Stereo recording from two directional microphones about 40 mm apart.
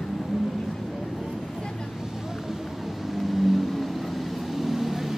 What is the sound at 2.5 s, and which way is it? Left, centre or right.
Vehicle, centre.